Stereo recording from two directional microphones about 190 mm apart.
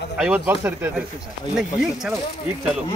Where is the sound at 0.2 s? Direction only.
10° right (ahead or behind).